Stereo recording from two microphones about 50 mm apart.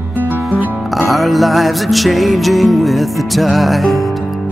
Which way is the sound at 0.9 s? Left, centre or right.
Centre.